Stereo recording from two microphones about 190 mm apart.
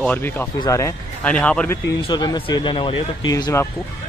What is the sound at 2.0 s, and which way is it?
Speech, 25° left (ahead or behind).